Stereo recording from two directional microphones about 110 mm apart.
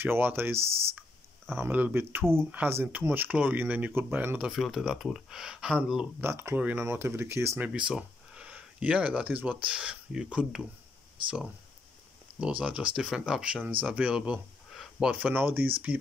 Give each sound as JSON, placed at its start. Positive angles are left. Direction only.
{"t": 0.0, "sound": "speech", "side_deg": -20}
{"t": 0.6, "sound": "speech", "side_deg": -65}
{"t": 1.5, "sound": "speech", "side_deg": -15}
{"t": 4.5, "sound": "speech", "side_deg": 0}
{"t": 6.2, "sound": "speech", "side_deg": -20}
{"t": 7.6, "sound": "speech", "side_deg": -10}
{"t": 12.4, "sound": "speech", "side_deg": -10}
{"t": 15.0, "sound": "speech", "side_deg": -15}